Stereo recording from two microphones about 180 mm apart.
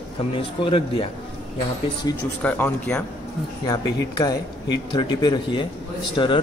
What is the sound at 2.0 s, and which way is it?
Speech, 20° left (ahead or behind).